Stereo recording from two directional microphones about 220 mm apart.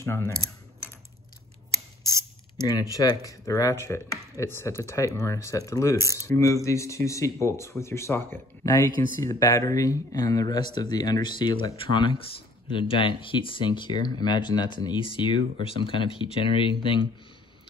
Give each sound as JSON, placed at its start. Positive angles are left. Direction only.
{"t": 0.0, "sound": "speech", "side_deg": 15}
{"t": 2.6, "sound": "speech", "side_deg": 15}